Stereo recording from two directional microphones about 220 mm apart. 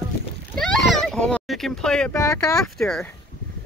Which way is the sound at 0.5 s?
Centre (ahead or behind).